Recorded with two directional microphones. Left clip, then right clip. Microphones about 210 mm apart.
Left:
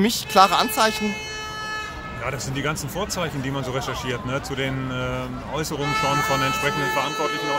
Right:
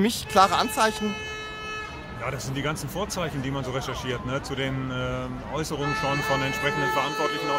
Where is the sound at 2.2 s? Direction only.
5° left (ahead or behind).